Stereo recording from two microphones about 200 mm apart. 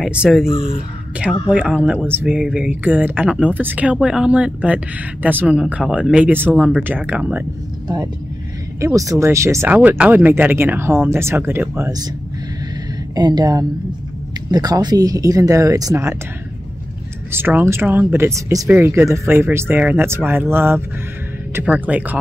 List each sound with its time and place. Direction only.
0.0 s speech: 5° right (ahead or behind)
0.5 s speech: 30° left (ahead or behind)
1.5 s speech: 5° right (ahead or behind)
8.8 s speech: 15° right (ahead or behind)
13.1 s a woman's voice: 20° right (ahead or behind)
17.3 s speech: 10° right (ahead or behind)